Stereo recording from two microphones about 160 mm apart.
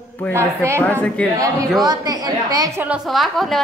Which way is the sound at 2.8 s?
5° right (ahead or behind).